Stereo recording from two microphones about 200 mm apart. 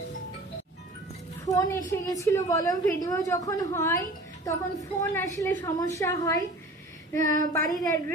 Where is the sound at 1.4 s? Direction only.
15° left (ahead or behind).